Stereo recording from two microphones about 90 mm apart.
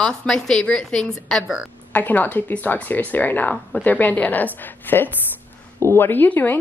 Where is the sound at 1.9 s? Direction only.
20° left (ahead or behind).